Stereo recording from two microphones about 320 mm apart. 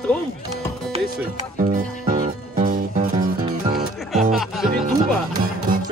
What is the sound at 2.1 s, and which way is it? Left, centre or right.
Music, centre.